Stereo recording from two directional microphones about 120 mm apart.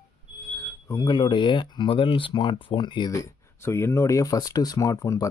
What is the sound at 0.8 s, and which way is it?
Speech, 30° left (ahead or behind).